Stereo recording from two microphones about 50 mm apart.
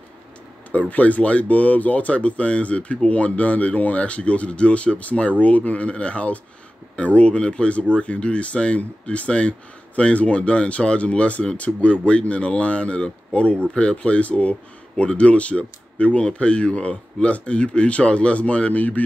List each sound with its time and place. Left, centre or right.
0.7 s speech: left